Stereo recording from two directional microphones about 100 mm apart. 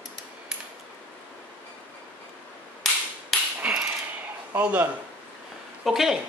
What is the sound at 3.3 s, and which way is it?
Hammer, centre (ahead or behind).